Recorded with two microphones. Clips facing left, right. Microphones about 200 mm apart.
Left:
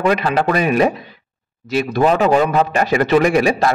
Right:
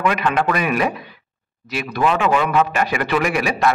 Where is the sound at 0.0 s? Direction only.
35° left (ahead or behind).